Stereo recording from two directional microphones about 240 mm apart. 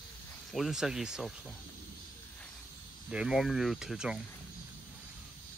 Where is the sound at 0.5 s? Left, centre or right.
Centre.